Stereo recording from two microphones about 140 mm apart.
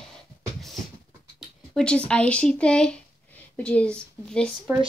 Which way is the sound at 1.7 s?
5° left (ahead or behind).